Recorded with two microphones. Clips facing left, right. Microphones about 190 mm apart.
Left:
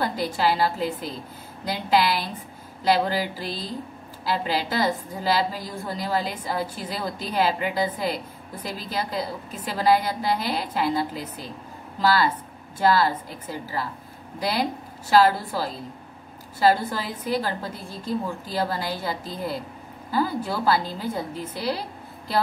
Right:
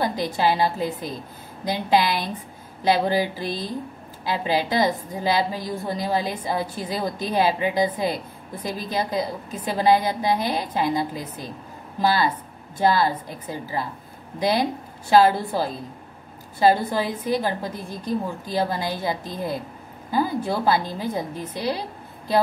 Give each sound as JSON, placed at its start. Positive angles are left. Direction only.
{"t": 0.0, "sound": "a woman's voice", "side_deg": -20}